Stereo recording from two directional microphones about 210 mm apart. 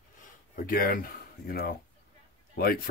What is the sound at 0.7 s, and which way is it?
Speech, 40° left (ahead or behind).